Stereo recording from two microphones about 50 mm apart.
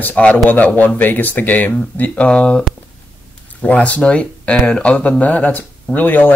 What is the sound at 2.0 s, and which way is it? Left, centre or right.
Speech, left.